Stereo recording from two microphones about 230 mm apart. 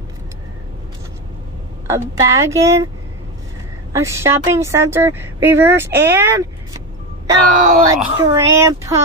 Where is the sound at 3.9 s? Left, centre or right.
Centre.